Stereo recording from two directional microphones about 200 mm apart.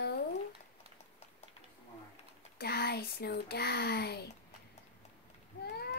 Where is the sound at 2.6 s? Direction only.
50° left (ahead or behind).